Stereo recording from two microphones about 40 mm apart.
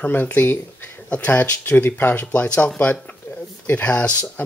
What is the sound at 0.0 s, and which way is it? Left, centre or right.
Speech, left.